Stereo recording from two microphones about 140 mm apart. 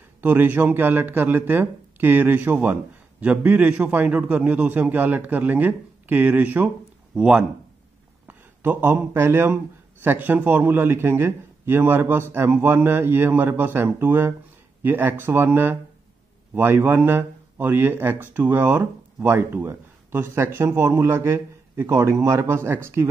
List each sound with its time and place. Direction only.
0.2 s speech: 15° right (ahead or behind)